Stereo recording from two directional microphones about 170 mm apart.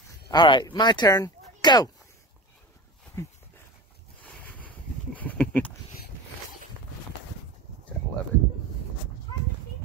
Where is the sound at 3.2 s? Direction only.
20° left (ahead or behind).